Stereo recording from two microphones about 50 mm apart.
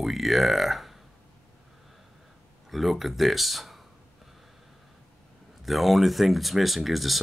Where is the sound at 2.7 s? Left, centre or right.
Centre.